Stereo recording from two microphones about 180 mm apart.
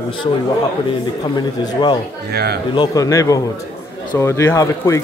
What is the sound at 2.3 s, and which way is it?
Speech, 60° right (ahead or behind).